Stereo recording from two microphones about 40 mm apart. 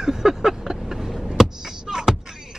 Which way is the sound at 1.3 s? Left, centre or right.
Centre.